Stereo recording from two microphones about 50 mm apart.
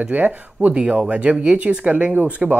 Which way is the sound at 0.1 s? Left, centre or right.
Right.